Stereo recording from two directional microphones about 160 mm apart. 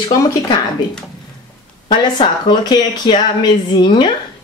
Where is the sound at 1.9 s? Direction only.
25° left (ahead or behind).